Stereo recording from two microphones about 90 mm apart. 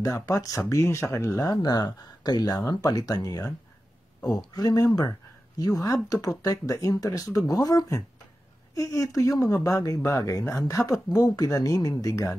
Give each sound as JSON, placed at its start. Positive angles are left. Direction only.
{"t": 0.0, "sound": "speech", "side_deg": 40}
{"t": 4.2, "sound": "speech", "side_deg": 5}
{"t": 4.6, "sound": "speech", "side_deg": 45}